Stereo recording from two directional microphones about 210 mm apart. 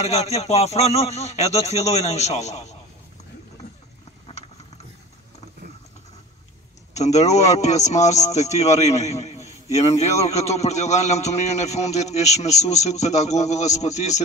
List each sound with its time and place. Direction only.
0.0 s a man's voice: 30° left (ahead or behind)
6.9 s a man's voice: 30° left (ahead or behind)